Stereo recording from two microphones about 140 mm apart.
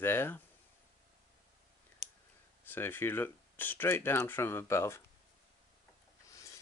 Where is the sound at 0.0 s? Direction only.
15° left (ahead or behind).